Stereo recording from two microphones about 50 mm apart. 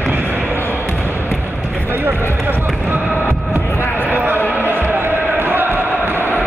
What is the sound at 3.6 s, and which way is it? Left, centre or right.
Basketball bounce, left.